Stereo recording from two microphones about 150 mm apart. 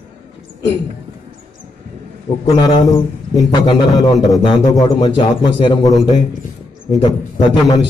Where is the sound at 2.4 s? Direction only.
25° left (ahead or behind).